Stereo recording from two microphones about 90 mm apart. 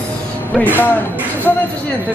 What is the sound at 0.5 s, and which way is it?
Music, 20° left (ahead or behind).